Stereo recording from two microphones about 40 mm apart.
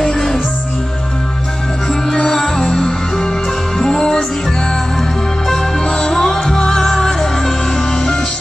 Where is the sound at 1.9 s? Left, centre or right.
Centre.